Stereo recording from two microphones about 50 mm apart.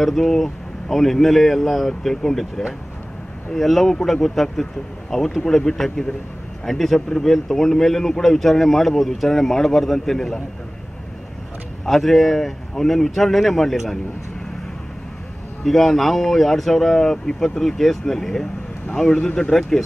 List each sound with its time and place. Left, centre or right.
0.0 s a man's voice: centre
11.8 s a man's voice: centre
15.6 s a man's voice: centre